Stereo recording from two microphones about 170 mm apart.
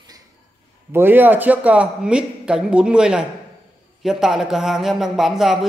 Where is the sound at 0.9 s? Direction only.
10° right (ahead or behind).